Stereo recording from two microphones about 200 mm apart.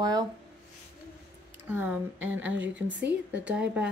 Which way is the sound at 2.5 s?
70° right (ahead or behind).